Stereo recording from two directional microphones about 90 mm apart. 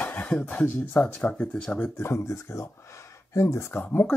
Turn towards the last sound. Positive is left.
turn(degrees=20)  # may be behind; listen again after turning